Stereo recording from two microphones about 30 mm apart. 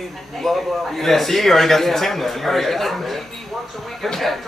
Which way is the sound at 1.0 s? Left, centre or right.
Centre.